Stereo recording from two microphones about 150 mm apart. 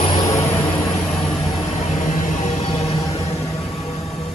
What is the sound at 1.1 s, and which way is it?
Vehicle, 5° left (ahead or behind).